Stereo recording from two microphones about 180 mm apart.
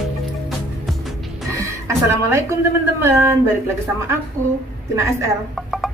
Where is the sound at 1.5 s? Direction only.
15° right (ahead or behind).